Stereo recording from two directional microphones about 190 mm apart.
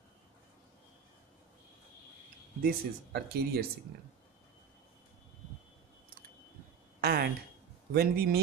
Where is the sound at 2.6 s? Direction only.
55° right (ahead or behind).